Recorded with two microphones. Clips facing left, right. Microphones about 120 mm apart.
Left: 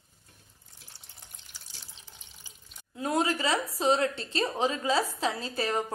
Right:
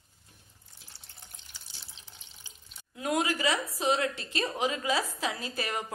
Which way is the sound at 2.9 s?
30° left (ahead or behind).